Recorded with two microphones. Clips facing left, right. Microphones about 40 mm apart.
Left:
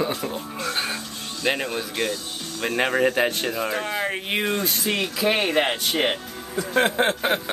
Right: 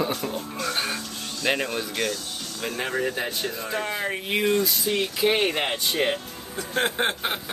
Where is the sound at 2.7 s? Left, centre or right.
Left.